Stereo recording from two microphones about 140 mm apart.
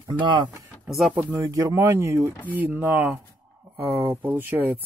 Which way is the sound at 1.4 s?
20° right (ahead or behind).